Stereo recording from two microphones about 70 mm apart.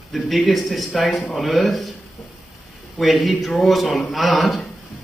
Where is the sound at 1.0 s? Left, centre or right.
Centre.